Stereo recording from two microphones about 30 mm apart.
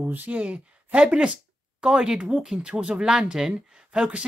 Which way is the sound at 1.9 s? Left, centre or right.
Right.